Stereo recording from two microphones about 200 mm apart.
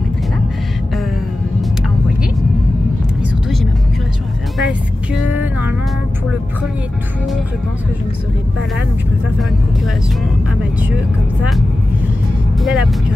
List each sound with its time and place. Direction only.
5.1 s vehicle: 10° right (ahead or behind)
12.5 s speech: centre (ahead or behind)